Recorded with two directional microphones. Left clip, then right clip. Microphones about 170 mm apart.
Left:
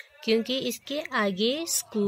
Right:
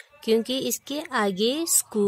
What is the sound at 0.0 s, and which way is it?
Speech, 45° right (ahead or behind).